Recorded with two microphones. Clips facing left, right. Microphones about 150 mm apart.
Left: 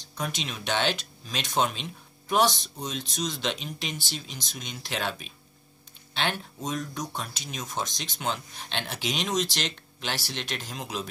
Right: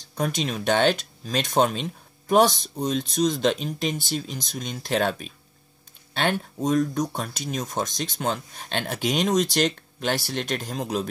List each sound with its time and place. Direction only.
0.2 s speech: 45° right (ahead or behind)